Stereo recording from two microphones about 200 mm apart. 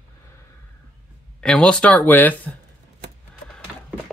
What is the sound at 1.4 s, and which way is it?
Speech, 5° left (ahead or behind).